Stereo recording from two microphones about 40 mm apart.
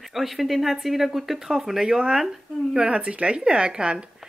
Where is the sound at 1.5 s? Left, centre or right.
Centre.